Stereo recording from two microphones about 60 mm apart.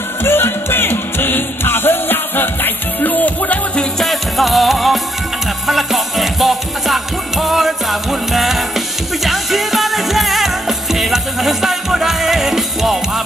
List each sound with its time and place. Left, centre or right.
0.2 s music: left
4.0 s music: centre